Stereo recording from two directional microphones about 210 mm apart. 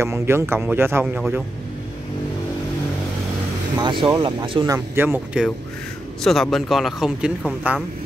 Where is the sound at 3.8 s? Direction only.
25° right (ahead or behind).